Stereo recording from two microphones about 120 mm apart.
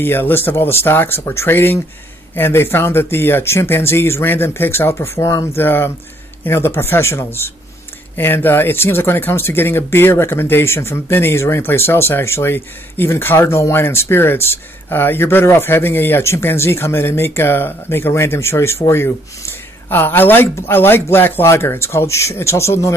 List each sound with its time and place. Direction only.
0.0 s speech: 20° left (ahead or behind)